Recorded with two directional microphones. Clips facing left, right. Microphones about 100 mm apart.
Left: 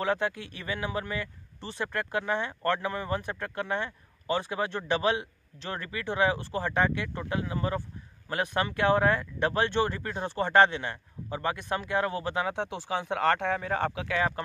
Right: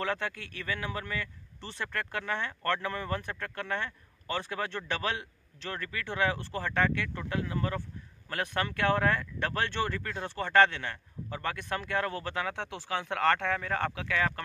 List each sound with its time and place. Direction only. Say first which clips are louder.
0.0 s speech: left 4 dB; 15° left (ahead or behind)